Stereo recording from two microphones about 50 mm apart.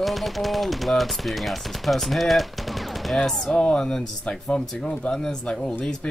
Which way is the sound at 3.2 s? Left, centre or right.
Centre.